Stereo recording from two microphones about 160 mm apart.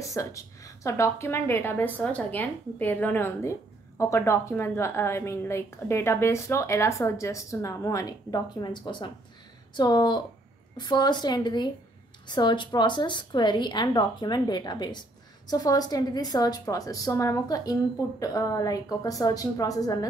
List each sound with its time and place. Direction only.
0.0 s a woman's voice: 20° left (ahead or behind)